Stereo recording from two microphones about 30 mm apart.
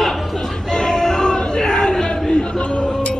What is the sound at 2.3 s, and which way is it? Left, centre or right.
Speech, left.